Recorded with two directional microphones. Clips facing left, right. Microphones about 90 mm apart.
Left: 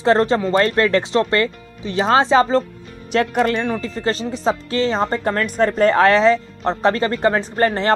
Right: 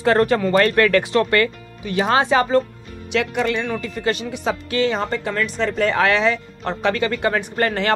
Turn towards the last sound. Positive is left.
turn(degrees=30)  # may be behind; listen again after turning